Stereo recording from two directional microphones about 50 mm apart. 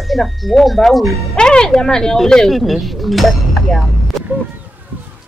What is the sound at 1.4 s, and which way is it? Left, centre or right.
Speech, centre.